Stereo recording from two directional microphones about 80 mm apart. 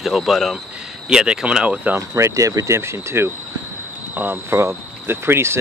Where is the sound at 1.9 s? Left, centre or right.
Right.